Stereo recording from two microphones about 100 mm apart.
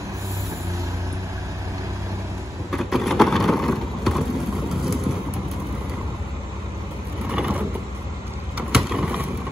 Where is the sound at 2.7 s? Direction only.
Centre (ahead or behind).